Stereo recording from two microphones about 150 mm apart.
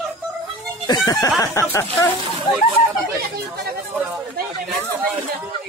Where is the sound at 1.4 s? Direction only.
20° left (ahead or behind).